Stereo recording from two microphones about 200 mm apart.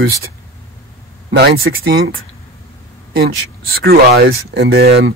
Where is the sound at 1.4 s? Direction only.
55° right (ahead or behind).